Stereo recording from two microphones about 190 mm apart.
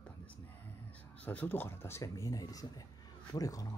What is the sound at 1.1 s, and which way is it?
Speech, 10° left (ahead or behind).